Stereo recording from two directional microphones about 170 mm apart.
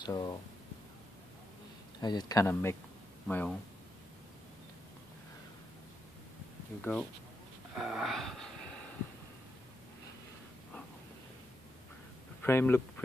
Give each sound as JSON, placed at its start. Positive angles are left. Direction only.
{"t": 0.0, "sound": "a sound", "side_deg": 25}
{"t": 2.0, "sound": "speech", "side_deg": 25}
{"t": 6.8, "sound": "speech", "side_deg": 5}
{"t": 7.7, "sound": "wheeze", "side_deg": -5}
{"t": 12.4, "sound": "speech", "side_deg": 15}